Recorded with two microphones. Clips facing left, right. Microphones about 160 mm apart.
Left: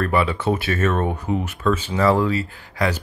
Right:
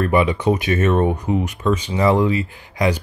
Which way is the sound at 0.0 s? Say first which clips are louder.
Right 3 dB; 15° right (ahead or behind).